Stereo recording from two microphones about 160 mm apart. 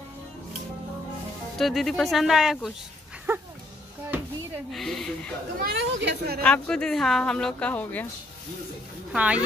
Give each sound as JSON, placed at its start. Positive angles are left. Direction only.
{"t": 1.6, "sound": "speech", "side_deg": 0}
{"t": 3.3, "sound": "dog", "side_deg": -15}
{"t": 4.7, "sound": "speech", "side_deg": 0}
{"t": 5.6, "sound": "a woman's voice", "side_deg": -90}
{"t": 6.4, "sound": "speech", "side_deg": 5}
{"t": 9.1, "sound": "speech", "side_deg": -10}